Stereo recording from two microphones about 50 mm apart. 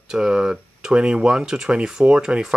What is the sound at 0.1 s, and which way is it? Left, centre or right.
Speech, centre.